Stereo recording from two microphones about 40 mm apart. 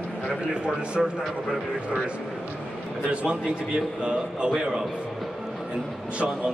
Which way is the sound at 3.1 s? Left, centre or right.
Right.